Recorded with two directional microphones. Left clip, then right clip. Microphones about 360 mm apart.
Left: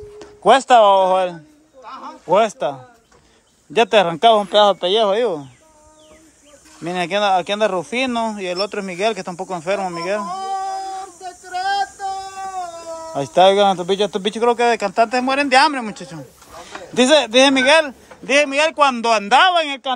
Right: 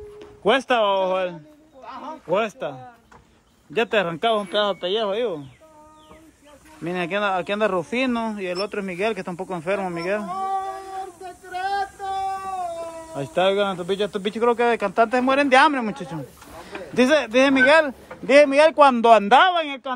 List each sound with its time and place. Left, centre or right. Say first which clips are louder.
0.2 s speech: left 7 dB; centre
6.8 s speech: left 5 dB; centre
11.2 s child singing: left 6 dB; centre
13.1 s speech: left 8 dB; centre